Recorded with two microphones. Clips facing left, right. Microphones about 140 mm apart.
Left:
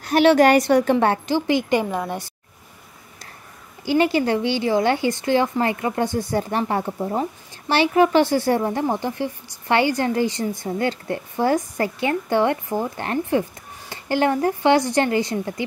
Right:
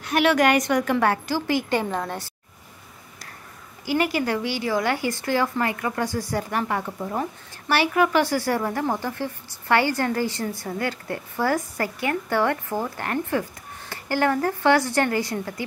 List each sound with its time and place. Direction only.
0.0 s speech: 30° left (ahead or behind); by 2.3 s 15° left (ahead or behind)
3.8 s speech: 25° left (ahead or behind)